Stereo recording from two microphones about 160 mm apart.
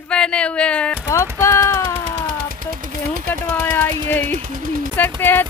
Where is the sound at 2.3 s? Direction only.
60° right (ahead or behind).